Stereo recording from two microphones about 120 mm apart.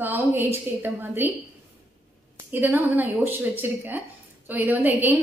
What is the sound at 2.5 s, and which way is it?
A woman's voice, 15° right (ahead or behind).